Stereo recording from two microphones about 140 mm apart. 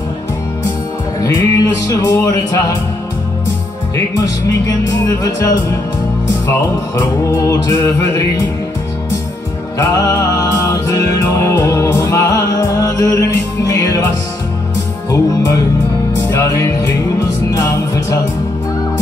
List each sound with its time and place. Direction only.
1.2 s music: 25° left (ahead or behind)
3.9 s music: 25° left (ahead or behind)
9.8 s music: 25° left (ahead or behind)
15.0 s music: 25° left (ahead or behind)